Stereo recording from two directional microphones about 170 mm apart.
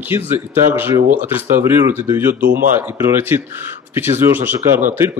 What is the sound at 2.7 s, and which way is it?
Speech, 15° right (ahead or behind).